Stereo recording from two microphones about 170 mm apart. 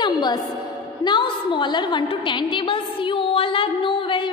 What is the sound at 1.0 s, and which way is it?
A woman's voice, 30° left (ahead or behind).